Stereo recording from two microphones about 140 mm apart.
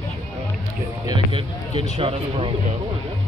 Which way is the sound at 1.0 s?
35° right (ahead or behind).